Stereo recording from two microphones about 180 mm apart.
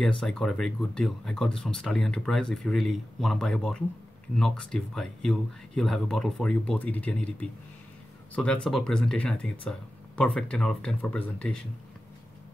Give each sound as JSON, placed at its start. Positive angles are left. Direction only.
{"t": 0.2, "sound": "speech", "side_deg": 5}